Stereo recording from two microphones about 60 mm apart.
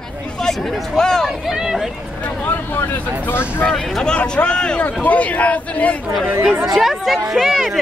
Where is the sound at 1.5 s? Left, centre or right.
Centre.